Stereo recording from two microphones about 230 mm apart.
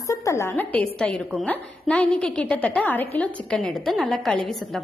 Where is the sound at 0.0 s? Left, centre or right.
Centre.